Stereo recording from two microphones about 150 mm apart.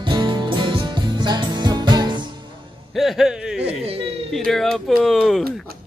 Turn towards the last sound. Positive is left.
turn(degrees=0)  # may be behind; listen again after turning